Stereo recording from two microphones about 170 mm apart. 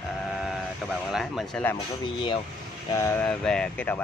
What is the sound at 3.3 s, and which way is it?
Speech, 5° left (ahead or behind).